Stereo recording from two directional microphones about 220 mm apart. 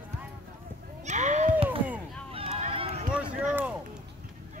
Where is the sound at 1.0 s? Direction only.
30° right (ahead or behind).